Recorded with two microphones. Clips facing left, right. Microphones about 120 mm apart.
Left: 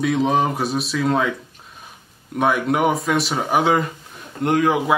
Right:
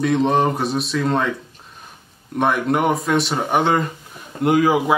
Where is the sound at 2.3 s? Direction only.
Centre (ahead or behind).